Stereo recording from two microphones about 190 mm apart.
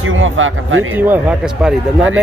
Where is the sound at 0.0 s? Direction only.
90° right.